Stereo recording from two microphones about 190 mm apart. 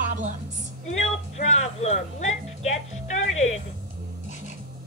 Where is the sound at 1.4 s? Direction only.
35° left (ahead or behind).